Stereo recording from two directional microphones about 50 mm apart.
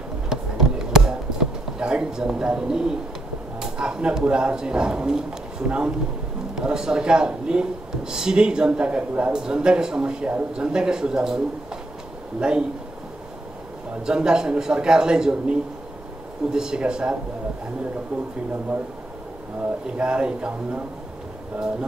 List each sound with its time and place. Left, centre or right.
0.3 s a sound: centre
3.5 s a man's voice: centre
14.0 s speech: centre
16.5 s a man's voice: centre
20.0 s a man's voice: centre